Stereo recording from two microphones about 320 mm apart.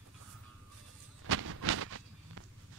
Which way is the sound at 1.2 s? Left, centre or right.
Right.